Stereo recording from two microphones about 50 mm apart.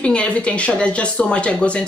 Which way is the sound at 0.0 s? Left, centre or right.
Left.